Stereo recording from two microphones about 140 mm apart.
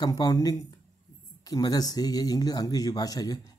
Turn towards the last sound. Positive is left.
turn(degrees=25)  # may be behind; listen again after turning